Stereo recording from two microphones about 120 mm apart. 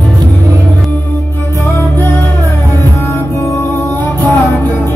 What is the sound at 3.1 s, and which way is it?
Music, 20° left (ahead or behind).